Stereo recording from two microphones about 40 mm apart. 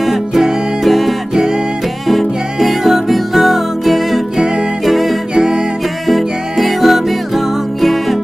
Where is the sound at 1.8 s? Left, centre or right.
Centre.